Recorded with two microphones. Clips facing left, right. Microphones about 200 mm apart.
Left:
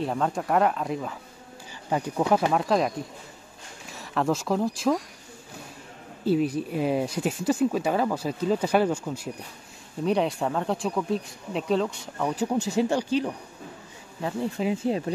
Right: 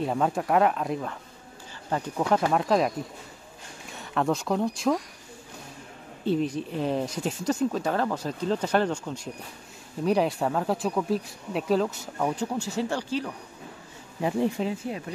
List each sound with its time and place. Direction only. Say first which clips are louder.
0.0 s speech: right 1 dB; 5° right (ahead or behind)
1.9 s speech: left 2 dB; 10° left (ahead or behind)
2.5 s speech: even; centre (ahead or behind)
3.9 s speech: left 1 dB; centre (ahead or behind)
6.2 s speech: left 2 dB; 10° left (ahead or behind)
12.4 s speech: left 4 dB; 15° left (ahead or behind)
14.9 s speech: left 7 dB; 30° left (ahead or behind)